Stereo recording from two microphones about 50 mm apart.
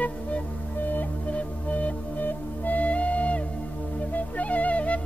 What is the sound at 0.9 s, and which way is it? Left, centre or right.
Music, left.